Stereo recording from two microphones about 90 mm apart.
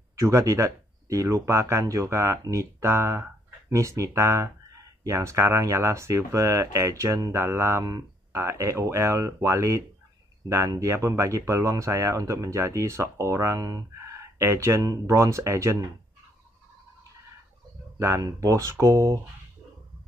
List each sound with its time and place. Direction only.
0.1 s speech: 35° right (ahead or behind)
7.8 s a sound: 40° right (ahead or behind)
8.4 s speech: 30° right (ahead or behind)
17.9 s speech: 35° right (ahead or behind)